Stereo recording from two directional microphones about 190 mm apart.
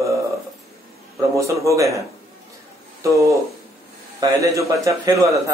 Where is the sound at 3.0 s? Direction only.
15° right (ahead or behind).